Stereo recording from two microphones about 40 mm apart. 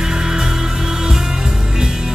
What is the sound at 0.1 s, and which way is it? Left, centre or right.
Music, centre.